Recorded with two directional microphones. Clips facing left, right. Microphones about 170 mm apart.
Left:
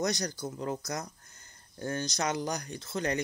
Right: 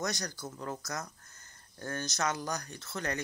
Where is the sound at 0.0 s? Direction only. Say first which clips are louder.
Left 5 dB; 20° left (ahead or behind).